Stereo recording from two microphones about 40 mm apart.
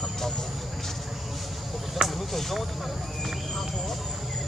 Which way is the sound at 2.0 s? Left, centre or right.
Centre.